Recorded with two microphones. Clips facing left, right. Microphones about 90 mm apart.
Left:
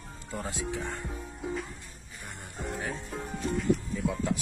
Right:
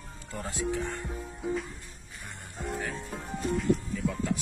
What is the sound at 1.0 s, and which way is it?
Music, centre (ahead or behind).